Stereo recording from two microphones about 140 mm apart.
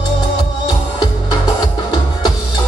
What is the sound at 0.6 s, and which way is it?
Music, 30° left (ahead or behind).